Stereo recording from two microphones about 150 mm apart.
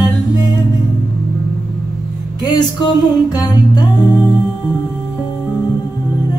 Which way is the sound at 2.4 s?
30° left (ahead or behind).